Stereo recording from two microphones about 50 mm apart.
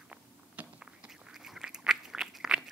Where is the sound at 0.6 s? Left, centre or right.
Right.